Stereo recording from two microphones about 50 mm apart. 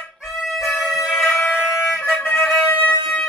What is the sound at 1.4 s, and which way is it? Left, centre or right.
Music, left.